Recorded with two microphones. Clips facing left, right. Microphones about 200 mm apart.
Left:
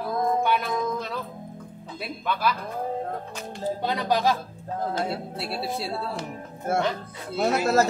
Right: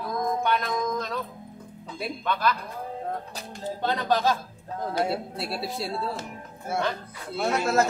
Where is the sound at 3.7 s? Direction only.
10° left (ahead or behind).